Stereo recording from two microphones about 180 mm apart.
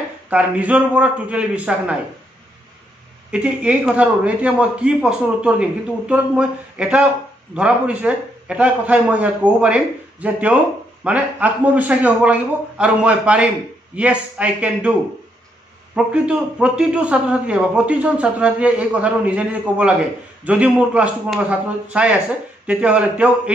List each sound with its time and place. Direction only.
0.3 s a man's voice: 5° right (ahead or behind)
3.3 s a man's voice: 5° right (ahead or behind)